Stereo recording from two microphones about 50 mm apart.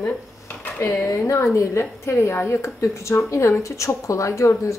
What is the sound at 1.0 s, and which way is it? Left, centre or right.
A woman's voice, left.